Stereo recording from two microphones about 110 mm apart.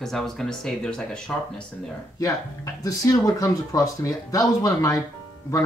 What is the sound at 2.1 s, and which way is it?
A man's voice, 30° left (ahead or behind).